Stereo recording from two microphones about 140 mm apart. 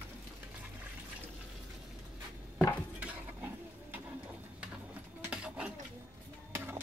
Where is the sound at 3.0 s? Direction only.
15° right (ahead or behind).